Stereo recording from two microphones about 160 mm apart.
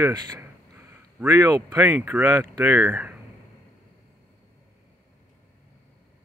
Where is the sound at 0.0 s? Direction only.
20° right (ahead or behind).